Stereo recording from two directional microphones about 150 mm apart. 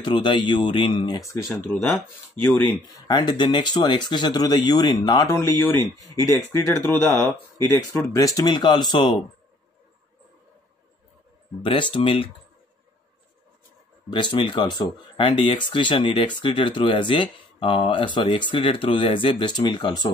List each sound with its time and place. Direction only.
0.0 s speech: 30° left (ahead or behind)
11.6 s speech: 35° left (ahead or behind)
14.1 s speech: 35° left (ahead or behind)